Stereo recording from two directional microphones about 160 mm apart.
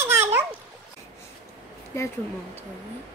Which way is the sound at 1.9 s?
20° left (ahead or behind).